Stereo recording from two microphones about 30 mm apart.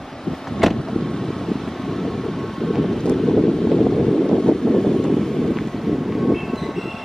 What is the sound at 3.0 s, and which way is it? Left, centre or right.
Wind, centre.